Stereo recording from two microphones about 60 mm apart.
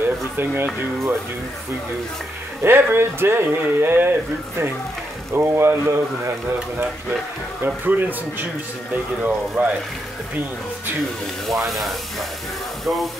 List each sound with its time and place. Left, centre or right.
0.0 s speech: right
2.6 s speech: right
7.6 s speech: right
11.7 s speech: centre